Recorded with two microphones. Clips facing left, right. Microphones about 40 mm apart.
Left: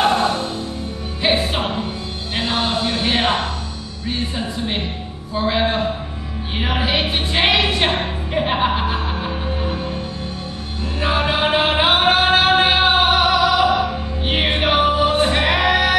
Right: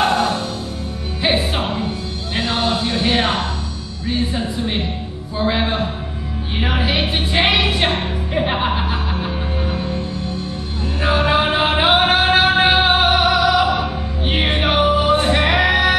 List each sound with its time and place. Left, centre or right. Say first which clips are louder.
0.1 s music: even; left
1.2 s music: even; centre
2.4 s music: right 1 dB; left
3.0 s music: right 3 dB; centre
5.3 s music: left 1 dB; centre
6.6 s a sound: even; centre
8.4 s music: left 1 dB; centre
11.0 s music: right 2 dB; centre
15.2 s choir: right 1 dB; centre